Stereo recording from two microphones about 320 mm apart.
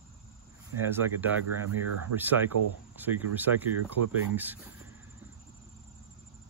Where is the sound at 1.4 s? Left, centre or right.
Right.